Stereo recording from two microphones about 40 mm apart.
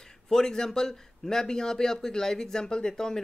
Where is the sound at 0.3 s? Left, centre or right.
Centre.